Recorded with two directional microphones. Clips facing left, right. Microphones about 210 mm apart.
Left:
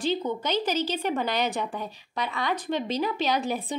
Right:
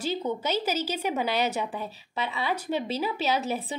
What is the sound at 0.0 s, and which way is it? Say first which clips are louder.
Speech: left 2 dB; 10° right (ahead or behind).